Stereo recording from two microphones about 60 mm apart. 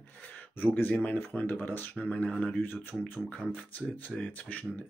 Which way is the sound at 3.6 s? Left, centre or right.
Left.